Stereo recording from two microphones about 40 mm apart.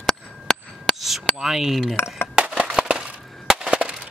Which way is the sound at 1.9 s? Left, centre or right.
Left.